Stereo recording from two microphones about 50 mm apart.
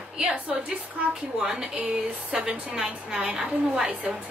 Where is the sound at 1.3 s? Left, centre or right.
Centre.